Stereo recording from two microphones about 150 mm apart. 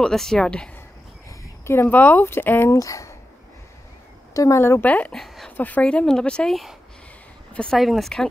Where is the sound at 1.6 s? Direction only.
15° left (ahead or behind).